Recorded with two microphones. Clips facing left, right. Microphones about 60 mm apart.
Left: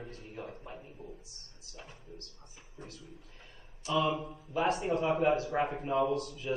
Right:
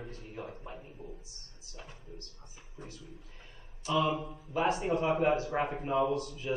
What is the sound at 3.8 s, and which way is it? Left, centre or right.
Speech, right.